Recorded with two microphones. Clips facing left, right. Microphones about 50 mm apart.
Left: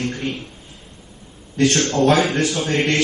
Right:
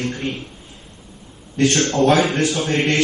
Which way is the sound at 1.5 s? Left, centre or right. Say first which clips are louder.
Even; right.